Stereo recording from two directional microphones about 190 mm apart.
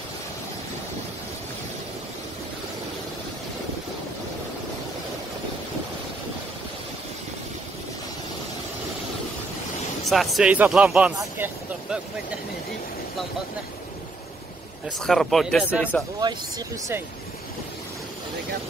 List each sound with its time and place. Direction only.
10.0 s speech: centre (ahead or behind)
15.0 s speech: centre (ahead or behind)
16.2 s speech: 20° right (ahead or behind)